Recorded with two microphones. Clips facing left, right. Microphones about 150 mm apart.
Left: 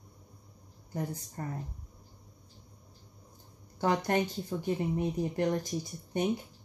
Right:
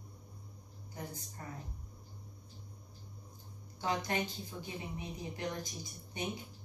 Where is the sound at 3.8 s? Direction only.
60° left (ahead or behind).